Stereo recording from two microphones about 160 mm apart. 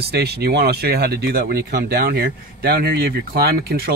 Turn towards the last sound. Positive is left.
turn(degrees=-75)  # may be behind; listen again after turning